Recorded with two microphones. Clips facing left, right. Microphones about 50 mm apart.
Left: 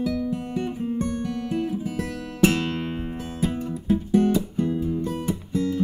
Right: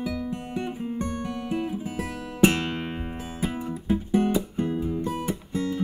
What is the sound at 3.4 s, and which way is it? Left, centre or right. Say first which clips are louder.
Music: left 3 dB; centre.